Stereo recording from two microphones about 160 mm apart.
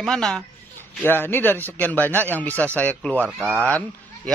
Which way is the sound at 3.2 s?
10° right (ahead or behind).